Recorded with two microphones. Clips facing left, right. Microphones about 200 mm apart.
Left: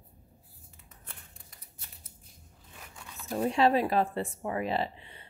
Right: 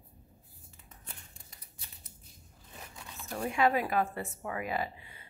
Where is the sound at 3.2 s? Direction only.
30° left (ahead or behind).